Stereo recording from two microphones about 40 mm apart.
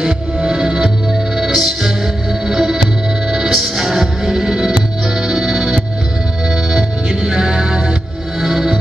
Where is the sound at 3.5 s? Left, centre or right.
Centre.